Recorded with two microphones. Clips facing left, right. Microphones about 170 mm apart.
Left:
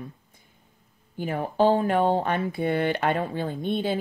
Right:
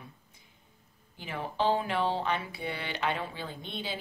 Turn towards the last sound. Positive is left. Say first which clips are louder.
# left 12 dB
turn(degrees=50)  # may be behind; listen again after turning